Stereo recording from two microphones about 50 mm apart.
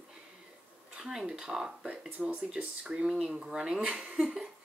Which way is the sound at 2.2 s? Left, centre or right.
Centre.